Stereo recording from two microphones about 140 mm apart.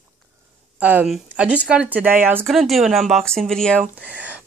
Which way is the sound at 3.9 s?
10° right (ahead or behind).